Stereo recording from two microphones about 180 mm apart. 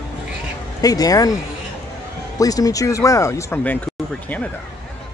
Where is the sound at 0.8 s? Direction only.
20° left (ahead or behind).